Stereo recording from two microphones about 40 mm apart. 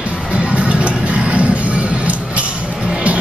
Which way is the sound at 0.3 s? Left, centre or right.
Right.